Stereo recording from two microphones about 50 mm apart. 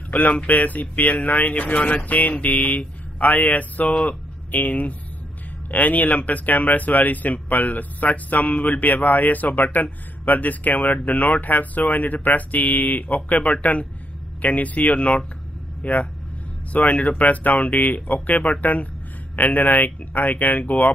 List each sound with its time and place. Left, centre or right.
0.1 s speech: left